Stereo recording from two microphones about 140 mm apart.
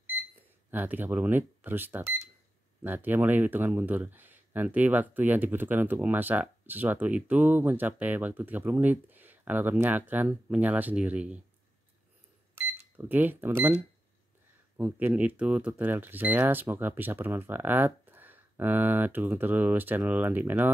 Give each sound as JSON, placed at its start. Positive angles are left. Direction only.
{"t": 0.7, "sound": "speech", "side_deg": -15}
{"t": 12.5, "sound": "cash register", "side_deg": -15}
{"t": 13.6, "sound": "speech", "side_deg": -15}